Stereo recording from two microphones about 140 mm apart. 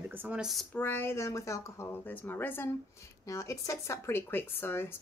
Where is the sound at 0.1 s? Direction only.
10° right (ahead or behind).